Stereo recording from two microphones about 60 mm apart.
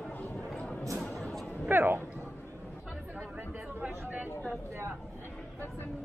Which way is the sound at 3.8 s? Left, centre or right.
Right.